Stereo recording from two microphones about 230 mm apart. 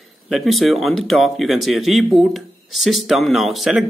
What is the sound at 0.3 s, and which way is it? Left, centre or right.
Speech, centre.